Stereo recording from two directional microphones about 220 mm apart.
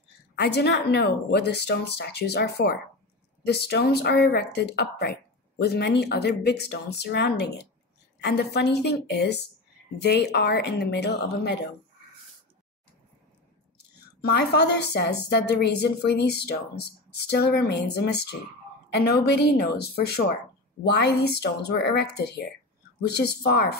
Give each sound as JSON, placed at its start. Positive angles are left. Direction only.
{"t": 0.4, "sound": "a woman's voice", "side_deg": 50}
{"t": 14.2, "sound": "a woman's voice", "side_deg": 50}